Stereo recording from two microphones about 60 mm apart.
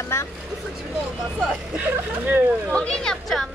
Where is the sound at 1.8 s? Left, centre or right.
Right.